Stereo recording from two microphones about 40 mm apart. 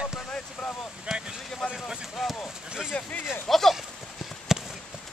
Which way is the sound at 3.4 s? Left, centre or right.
Centre.